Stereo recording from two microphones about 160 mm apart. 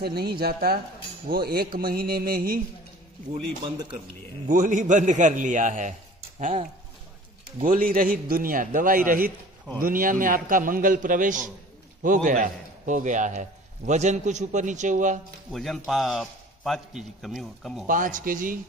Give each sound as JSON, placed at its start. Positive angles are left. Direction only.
{"t": 0.0, "sound": "a sound", "side_deg": -80}
{"t": 3.6, "sound": "a man's voice", "side_deg": -30}
{"t": 4.5, "sound": "a man's voice", "side_deg": -55}
{"t": 7.6, "sound": "a man's voice", "side_deg": -60}
{"t": 15.5, "sound": "a man's voice", "side_deg": 0}
{"t": 17.8, "sound": "a man's voice", "side_deg": -55}